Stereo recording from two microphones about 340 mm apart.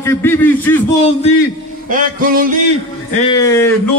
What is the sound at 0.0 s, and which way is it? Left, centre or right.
Speech, centre.